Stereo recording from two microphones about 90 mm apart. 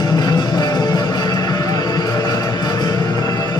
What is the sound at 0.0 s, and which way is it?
Music, 45° left (ahead or behind).